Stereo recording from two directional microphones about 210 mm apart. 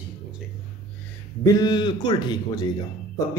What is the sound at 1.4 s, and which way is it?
A man's voice, 20° left (ahead or behind).